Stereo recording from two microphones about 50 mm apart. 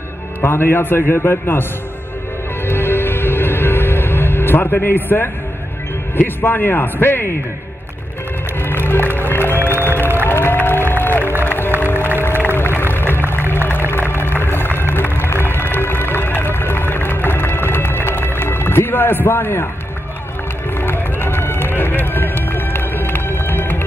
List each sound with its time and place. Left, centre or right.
0.4 s a man's voice: left
2.6 s music: left
6.1 s a man's voice: left
8.8 s music: left
9.6 s music: right
9.8 s music: left
20.7 s run: left